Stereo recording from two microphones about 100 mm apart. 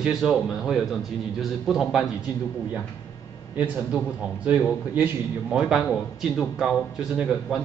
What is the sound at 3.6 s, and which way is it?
A man's voice, 15° right (ahead or behind).